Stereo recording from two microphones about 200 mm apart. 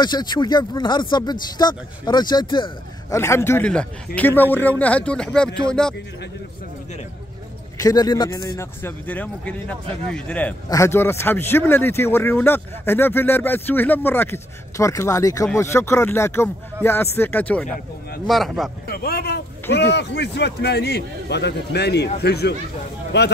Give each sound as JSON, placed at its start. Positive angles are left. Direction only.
{"t": 0.0, "sound": "a man's voice", "side_deg": 20}
{"t": 7.7, "sound": "a man's voice", "side_deg": 20}
{"t": 18.9, "sound": "a man's voice", "side_deg": 50}